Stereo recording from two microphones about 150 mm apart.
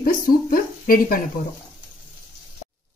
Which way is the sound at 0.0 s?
65° left (ahead or behind).